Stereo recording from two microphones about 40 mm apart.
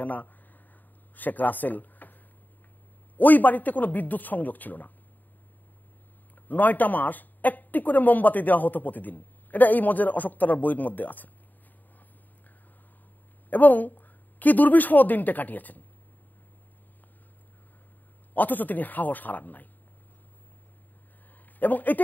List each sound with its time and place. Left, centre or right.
0.0 s a sound: left
1.1 s speech: left
3.2 s a woman's voice: left
6.3 s a woman's voice: left
13.5 s a woman's voice: left
18.3 s a woman's voice: left
21.5 s a man's voice: left